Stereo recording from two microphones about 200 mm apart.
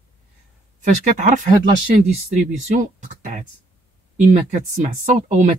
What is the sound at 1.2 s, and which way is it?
A man's voice, 40° right (ahead or behind).